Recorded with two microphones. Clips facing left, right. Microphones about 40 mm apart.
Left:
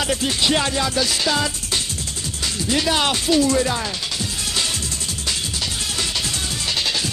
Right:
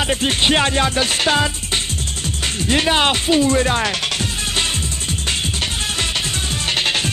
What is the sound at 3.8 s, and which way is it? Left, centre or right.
Music, right.